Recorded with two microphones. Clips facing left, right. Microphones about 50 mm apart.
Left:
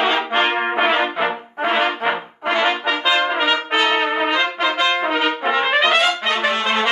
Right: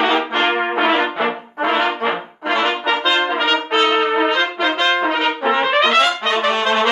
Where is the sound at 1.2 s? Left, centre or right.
Centre.